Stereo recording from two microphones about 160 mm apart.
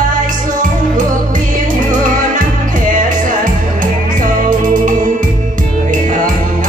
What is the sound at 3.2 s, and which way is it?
Music, 55° right (ahead or behind).